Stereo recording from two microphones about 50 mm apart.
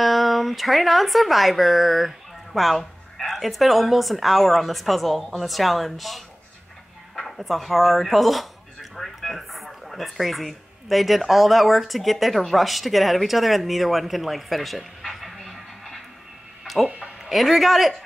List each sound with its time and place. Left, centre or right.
0.0 s speech: centre
16.6 s music: centre
17.2 s a man's voice: centre